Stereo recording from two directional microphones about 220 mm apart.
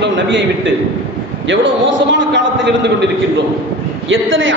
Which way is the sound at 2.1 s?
55° right (ahead or behind).